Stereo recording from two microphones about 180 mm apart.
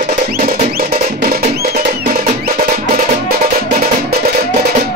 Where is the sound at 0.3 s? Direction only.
55° right (ahead or behind).